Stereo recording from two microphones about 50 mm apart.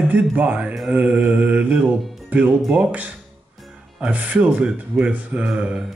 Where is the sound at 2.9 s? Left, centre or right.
Right.